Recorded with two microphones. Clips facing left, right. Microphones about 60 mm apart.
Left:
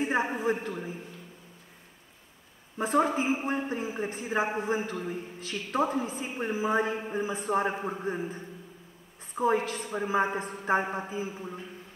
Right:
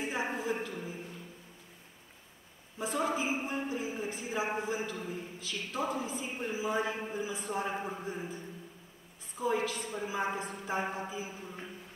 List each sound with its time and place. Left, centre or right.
0.0 s a sound: left
0.4 s a man's voice: left
2.8 s a man's voice: left
9.4 s a man's voice: left